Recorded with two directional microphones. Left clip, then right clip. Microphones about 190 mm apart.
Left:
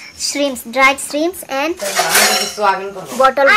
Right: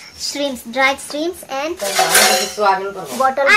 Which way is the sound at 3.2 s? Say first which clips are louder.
Left 4 dB; 30° left (ahead or behind).